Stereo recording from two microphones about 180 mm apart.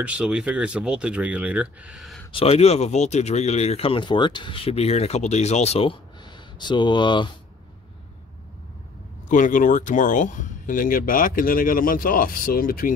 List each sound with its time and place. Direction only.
0.0 s speech: 5° right (ahead or behind)
2.3 s speech: 35° left (ahead or behind)
9.3 s speech: 45° left (ahead or behind)